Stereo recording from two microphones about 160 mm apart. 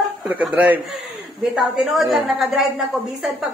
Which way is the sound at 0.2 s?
5° right (ahead or behind).